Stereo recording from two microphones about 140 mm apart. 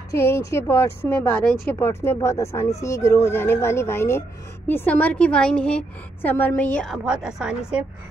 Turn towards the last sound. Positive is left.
turn(degrees=-5)  # may be behind; listen again after turning